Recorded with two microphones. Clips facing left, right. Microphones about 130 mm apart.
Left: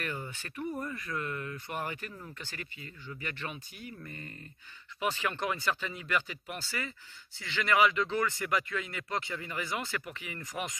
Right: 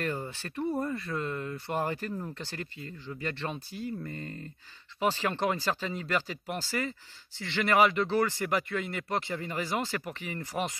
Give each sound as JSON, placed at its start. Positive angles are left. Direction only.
{"t": 0.0, "sound": "speech", "side_deg": -35}